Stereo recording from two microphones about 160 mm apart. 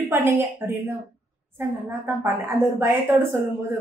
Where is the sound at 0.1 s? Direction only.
15° right (ahead or behind).